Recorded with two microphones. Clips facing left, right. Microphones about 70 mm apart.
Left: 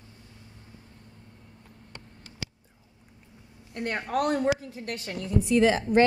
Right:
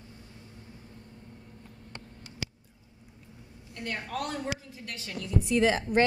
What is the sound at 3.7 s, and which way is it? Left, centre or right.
A woman's voice, left.